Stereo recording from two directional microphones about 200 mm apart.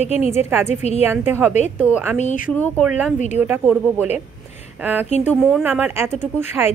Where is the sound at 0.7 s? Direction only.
35° left (ahead or behind).